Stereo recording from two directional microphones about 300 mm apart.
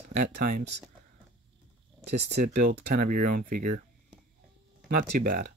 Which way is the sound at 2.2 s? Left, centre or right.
Right.